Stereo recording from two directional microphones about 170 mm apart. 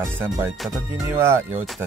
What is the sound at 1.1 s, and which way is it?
Speech, 15° right (ahead or behind).